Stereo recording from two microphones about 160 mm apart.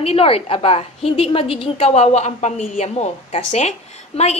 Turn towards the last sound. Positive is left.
turn(degrees=45)  # may be behind; listen again after turning